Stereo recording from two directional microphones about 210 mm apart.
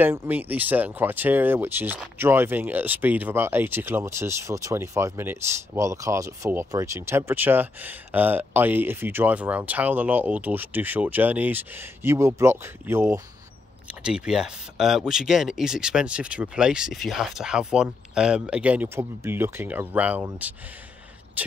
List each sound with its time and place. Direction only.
0.0 s speech: 10° right (ahead or behind)